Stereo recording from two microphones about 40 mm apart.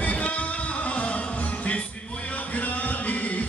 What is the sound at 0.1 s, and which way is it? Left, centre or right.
Music, left.